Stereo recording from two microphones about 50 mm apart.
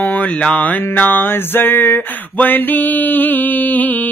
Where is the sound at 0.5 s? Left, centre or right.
Left.